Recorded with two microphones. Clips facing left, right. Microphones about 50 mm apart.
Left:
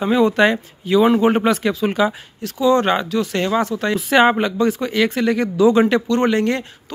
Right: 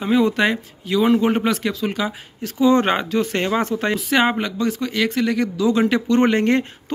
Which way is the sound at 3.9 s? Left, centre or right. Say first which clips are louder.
Left 6 dB; centre.